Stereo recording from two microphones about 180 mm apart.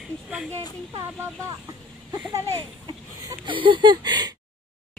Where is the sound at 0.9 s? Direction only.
15° right (ahead or behind).